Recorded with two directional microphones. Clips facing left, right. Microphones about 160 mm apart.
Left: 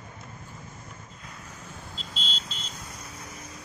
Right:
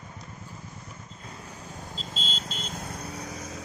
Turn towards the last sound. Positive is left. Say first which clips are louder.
# right 6 dB
turn(degrees=-55)  # may be behind; listen again after turning